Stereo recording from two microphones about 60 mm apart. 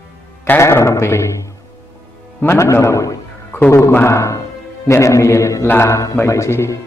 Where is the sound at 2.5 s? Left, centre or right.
Left.